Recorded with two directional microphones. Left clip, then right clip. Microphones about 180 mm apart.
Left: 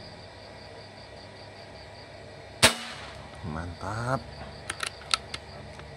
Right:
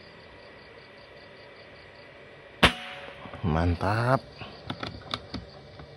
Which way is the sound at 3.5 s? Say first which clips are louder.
Right 9 dB; 40° right (ahead or behind).